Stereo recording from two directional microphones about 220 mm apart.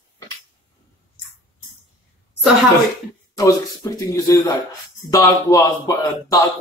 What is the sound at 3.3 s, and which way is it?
A man's voice, 15° left (ahead or behind).